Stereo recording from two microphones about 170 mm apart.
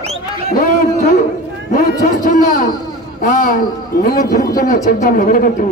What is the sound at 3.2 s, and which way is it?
A man's voice, 55° left (ahead or behind).